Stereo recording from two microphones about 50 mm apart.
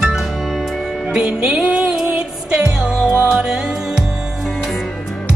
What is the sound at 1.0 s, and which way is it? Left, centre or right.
Music, centre.